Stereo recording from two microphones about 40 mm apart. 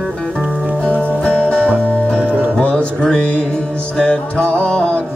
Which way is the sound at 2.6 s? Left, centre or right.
Left.